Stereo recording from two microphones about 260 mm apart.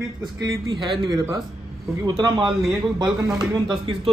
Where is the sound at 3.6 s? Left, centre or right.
Centre.